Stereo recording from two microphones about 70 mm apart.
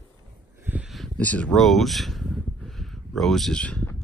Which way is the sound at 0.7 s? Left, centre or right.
Right.